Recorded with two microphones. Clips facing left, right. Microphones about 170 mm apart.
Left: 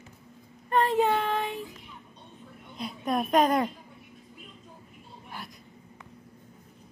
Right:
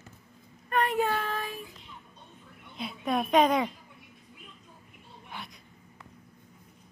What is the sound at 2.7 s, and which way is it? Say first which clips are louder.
Speech: left 1 dB; centre (ahead or behind).